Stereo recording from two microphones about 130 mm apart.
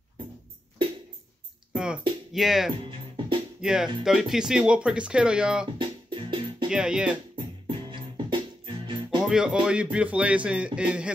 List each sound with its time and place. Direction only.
1.7 s music: 5° right (ahead or behind)
2.3 s speech: centre (ahead or behind)
5.8 s music: 40° right (ahead or behind)
6.7 s speech: 5° right (ahead or behind)
7.3 s music: 40° right (ahead or behind)
9.2 s speech: 5° right (ahead or behind)